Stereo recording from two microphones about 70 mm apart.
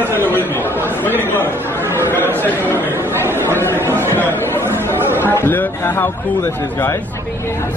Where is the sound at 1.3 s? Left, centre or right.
Left.